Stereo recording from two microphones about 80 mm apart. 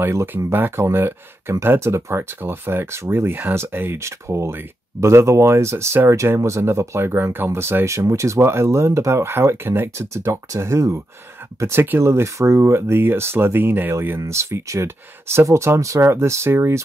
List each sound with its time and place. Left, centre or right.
0.0 s speech: right